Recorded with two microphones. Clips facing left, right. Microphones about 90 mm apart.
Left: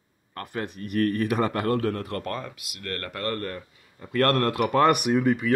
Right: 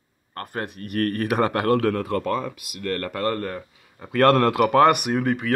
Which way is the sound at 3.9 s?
80° right.